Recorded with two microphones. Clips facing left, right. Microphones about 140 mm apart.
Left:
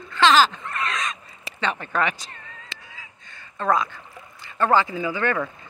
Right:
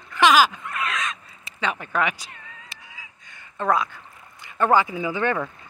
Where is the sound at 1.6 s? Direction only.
5° right (ahead or behind).